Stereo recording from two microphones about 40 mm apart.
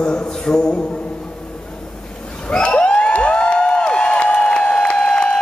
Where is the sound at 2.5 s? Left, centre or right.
Left.